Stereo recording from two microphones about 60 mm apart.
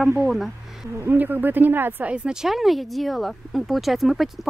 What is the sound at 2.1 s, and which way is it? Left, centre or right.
Speech, centre.